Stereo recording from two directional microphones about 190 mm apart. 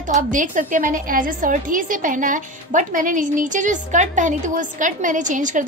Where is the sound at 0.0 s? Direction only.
45° right (ahead or behind).